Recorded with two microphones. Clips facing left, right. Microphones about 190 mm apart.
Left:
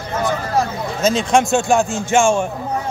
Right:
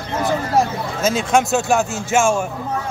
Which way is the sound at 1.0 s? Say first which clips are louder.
Left 2 dB; 5° right (ahead or behind).